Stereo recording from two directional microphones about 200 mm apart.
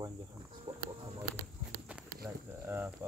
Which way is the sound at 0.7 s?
30° right (ahead or behind).